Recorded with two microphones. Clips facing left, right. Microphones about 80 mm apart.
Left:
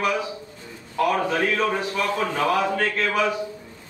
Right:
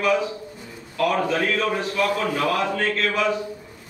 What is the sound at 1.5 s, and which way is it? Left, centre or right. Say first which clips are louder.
A man's voice: right 1 dB; left.